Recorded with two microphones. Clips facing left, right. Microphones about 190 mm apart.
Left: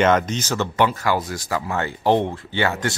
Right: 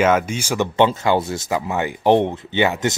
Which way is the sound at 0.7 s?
25° right (ahead or behind).